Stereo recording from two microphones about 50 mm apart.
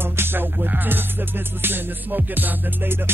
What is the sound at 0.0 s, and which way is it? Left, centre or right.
Music, right.